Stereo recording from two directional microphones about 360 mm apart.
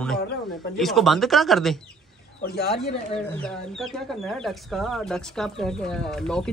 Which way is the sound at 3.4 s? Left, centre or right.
Centre.